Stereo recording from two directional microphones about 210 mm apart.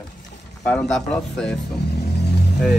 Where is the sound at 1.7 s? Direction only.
50° left (ahead or behind).